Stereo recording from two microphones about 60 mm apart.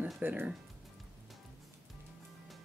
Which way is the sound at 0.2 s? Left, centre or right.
Right.